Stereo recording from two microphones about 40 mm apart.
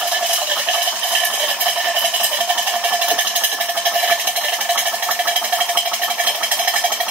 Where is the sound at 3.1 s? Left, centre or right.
Right.